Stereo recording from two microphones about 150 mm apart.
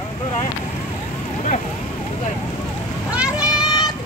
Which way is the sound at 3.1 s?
5° right (ahead or behind).